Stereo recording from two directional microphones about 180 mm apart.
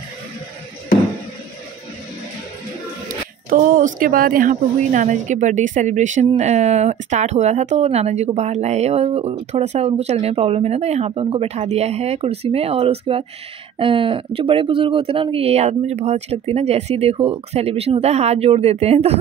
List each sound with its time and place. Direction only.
3.4 s speech: 50° right (ahead or behind)